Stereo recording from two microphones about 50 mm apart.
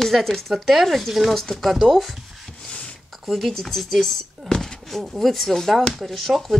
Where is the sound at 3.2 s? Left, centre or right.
Centre.